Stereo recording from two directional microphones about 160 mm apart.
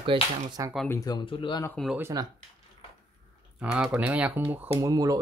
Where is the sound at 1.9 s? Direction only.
15° right (ahead or behind).